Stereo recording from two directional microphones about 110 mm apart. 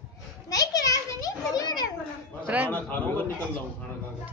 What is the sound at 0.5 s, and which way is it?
Children playing, 35° left (ahead or behind).